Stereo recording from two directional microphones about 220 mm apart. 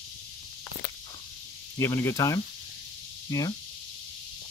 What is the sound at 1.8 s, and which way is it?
Speech, 10° left (ahead or behind).